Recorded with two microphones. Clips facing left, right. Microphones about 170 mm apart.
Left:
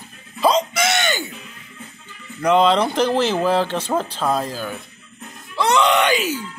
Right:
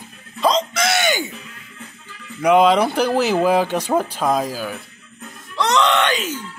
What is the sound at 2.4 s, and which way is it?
Speech, 10° right (ahead or behind).